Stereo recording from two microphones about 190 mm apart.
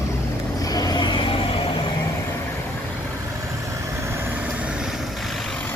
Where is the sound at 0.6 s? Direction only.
20° left (ahead or behind).